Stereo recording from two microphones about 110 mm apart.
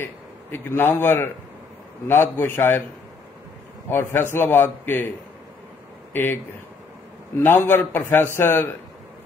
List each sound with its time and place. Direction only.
0.0 s a man's voice: 20° left (ahead or behind)
2.3 s a man's voice: 20° left (ahead or behind)
3.9 s a man's voice: 20° left (ahead or behind)
6.1 s a man's voice: 20° left (ahead or behind)